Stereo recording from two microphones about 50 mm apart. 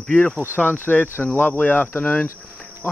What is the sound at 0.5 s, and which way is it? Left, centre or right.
Speech, left.